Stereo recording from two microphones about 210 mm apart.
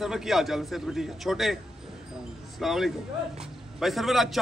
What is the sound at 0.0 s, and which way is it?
Speech, centre (ahead or behind).